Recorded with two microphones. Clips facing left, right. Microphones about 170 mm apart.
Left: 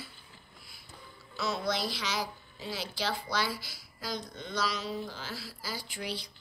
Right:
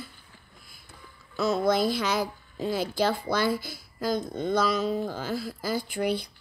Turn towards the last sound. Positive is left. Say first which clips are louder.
# right 11 dB
turn(degrees=-55)  # may be behind; listen again after turning